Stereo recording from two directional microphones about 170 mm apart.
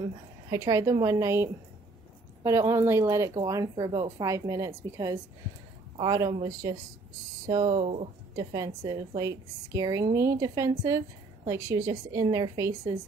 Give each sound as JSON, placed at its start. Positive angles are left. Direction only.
{"t": 0.5, "sound": "a woman's voice", "side_deg": -20}
{"t": 7.6, "sound": "speech", "side_deg": -40}
{"t": 8.4, "sound": "a woman's voice", "side_deg": -20}